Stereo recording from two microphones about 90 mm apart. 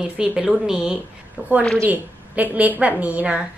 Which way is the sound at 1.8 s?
20° right (ahead or behind).